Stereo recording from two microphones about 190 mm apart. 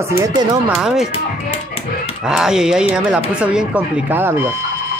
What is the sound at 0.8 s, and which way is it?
Speech, centre (ahead or behind).